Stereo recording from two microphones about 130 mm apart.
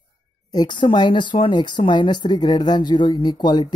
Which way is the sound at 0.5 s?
35° left (ahead or behind).